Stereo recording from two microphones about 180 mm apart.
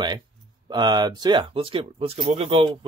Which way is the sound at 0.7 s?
25° right (ahead or behind).